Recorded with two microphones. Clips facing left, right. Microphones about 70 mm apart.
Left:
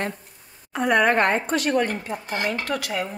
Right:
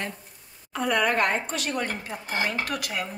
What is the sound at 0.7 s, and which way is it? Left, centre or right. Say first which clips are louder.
A woman's voice: left 5 dB; left.